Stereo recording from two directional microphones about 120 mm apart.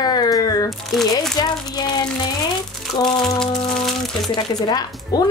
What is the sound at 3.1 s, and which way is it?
A woman's voice, 35° left (ahead or behind).